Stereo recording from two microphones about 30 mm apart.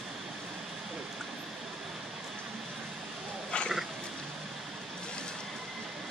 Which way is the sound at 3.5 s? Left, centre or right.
Left.